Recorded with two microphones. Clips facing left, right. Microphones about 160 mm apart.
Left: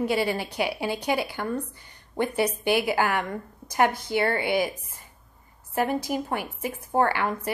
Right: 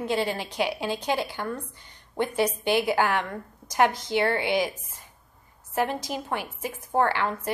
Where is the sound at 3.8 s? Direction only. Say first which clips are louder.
Even; 55° left (ahead or behind).